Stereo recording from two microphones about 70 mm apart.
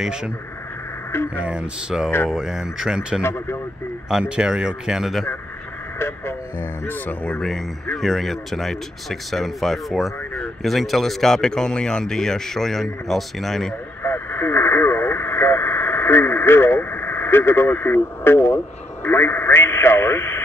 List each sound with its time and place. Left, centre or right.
0.0 s speech: centre
1.1 s speech: left
1.4 s speech: centre
3.2 s speech: left
4.1 s speech: centre
5.9 s speech: left
6.9 s speech: left
7.3 s speech: centre
14.0 s radio: left
19.0 s speech: left